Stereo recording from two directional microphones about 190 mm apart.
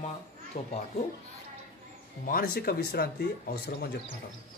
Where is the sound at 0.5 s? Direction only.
40° left (ahead or behind).